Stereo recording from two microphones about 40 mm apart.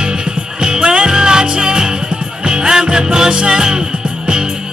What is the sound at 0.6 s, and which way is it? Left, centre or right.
Music, right.